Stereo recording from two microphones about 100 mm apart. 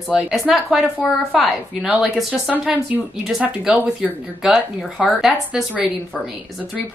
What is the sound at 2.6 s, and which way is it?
Speech, 15° right (ahead or behind).